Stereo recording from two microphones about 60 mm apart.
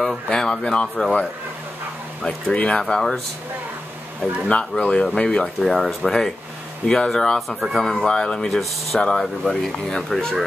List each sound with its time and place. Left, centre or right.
0.3 s speech: centre
2.2 s speech: centre
2.8 s speech: centre
4.2 s speech: centre
5.6 s speech: centre
7.9 s speech: centre